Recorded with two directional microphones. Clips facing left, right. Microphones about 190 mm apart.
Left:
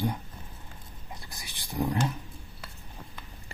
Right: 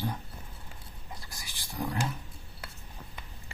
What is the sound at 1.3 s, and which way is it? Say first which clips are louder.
Wild animals: left 8 dB; 20° left (ahead or behind).